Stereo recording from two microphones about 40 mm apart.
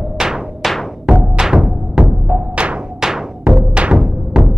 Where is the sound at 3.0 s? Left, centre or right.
Centre.